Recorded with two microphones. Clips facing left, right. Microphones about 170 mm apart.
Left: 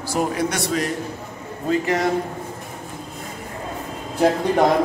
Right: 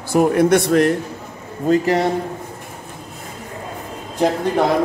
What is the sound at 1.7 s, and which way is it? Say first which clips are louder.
Speech: right 5 dB; 35° right (ahead or behind).